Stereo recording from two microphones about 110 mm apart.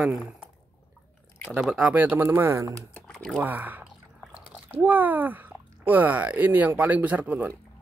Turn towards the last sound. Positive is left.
turn(degrees=-15)  # may be behind; listen again after turning